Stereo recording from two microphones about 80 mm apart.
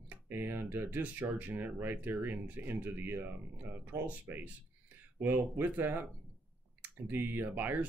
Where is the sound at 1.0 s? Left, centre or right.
Centre.